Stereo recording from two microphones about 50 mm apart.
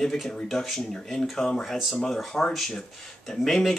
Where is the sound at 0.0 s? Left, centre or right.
Centre.